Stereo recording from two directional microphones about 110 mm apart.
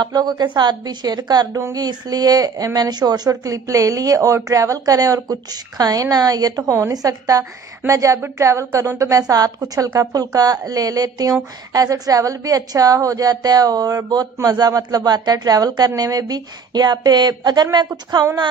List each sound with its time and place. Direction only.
0.0 s speech: 40° right (ahead or behind)